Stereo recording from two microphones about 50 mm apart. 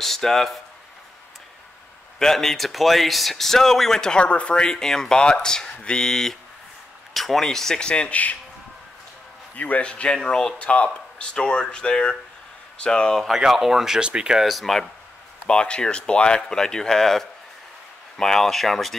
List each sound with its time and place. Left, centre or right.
0.0 s speech: centre
2.1 s speech: centre
9.6 s a man's voice: left
9.8 s speech: centre
13.1 s speech: centre
14.4 s speech: centre
15.4 s speech: left; by 18.9 s centre